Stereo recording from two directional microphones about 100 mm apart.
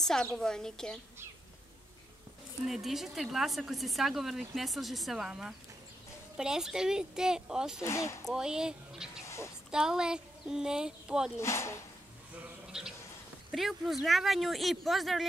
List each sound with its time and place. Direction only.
0.0 s a woman's voice: 5° left (ahead or behind)
2.6 s a woman's voice: 5° right (ahead or behind)
7.8 s speech: 30° left (ahead or behind)
8.3 s speech: 5° right (ahead or behind)
9.2 s a sound: 30° left (ahead or behind)
9.7 s speech: 5° right (ahead or behind)
11.3 s speech: 25° left (ahead or behind)
12.6 s sheep: 5° right (ahead or behind)
13.5 s a woman's voice: centre (ahead or behind)